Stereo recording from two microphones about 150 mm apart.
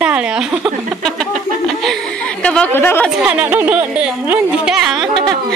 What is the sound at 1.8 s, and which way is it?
A woman's voice, 5° left (ahead or behind).